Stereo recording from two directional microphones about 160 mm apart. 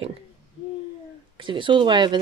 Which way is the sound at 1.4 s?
30° right (ahead or behind).